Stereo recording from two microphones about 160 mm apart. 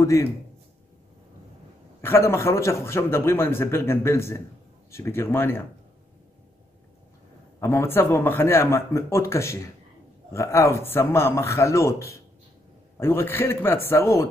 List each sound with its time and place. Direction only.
0.0 s a man's voice: 20° left (ahead or behind)
2.0 s a man's voice: 15° left (ahead or behind)
7.6 s a man's voice: 15° left (ahead or behind)